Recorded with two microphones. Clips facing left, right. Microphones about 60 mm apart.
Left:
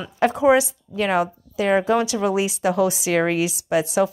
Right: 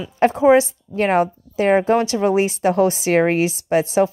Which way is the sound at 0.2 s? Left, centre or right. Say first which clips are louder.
Right 3 dB; right.